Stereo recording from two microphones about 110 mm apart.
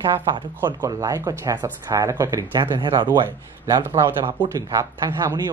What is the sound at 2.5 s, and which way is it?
Speech, 45° right (ahead or behind).